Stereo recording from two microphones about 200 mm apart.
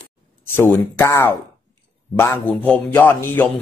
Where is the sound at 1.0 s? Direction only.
10° left (ahead or behind).